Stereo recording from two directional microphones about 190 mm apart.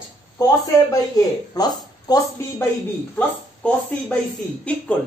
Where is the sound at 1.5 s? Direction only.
20° left (ahead or behind).